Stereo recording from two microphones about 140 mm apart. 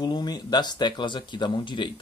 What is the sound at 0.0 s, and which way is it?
Speech, 30° left (ahead or behind).